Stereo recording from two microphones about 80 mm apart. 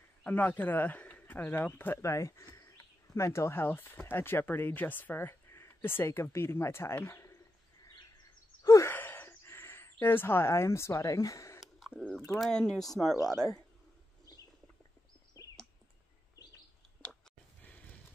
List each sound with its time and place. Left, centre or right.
0.2 s speech: left
2.0 s speech: left
7.1 s bird: left
7.9 s a sound: left
8.8 s a sound: left
12.4 s speech: centre
13.3 s speech: left